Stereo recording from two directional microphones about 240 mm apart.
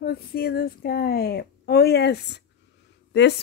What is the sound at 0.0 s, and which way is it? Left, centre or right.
A woman's voice, left.